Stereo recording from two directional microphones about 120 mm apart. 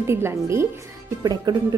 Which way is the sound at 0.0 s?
20° right (ahead or behind).